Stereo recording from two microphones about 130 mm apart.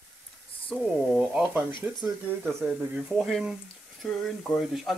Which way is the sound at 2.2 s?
15° right (ahead or behind).